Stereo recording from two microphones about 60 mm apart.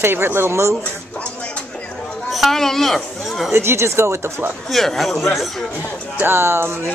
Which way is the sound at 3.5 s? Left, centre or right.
Right.